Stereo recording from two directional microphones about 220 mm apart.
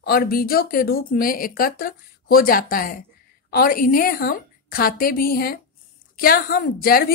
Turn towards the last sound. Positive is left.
turn(degrees=40)  # may be behind; listen again after turning